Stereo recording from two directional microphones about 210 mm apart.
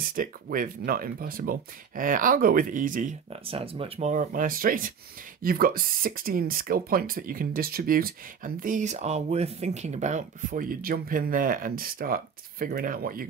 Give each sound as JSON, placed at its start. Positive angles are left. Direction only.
{"t": 0.0, "sound": "speech", "side_deg": -40}